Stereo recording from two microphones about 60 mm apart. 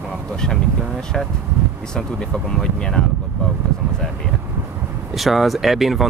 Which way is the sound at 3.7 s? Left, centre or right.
Centre.